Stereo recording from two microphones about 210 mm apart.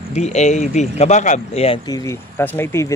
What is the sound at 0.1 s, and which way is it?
Speech, 30° left (ahead or behind).